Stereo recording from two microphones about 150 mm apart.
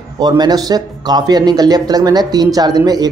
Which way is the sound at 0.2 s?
25° right (ahead or behind).